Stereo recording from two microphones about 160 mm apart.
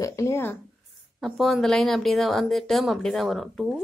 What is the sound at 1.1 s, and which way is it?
Speech, centre (ahead or behind).